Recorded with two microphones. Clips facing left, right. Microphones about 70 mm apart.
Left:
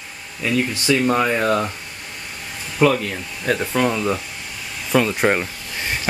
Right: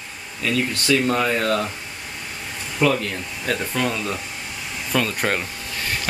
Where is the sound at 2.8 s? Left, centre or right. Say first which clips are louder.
Left 3 dB; centre.